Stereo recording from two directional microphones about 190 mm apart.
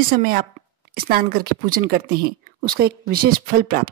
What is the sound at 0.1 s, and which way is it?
A woman's voice, 50° right (ahead or behind).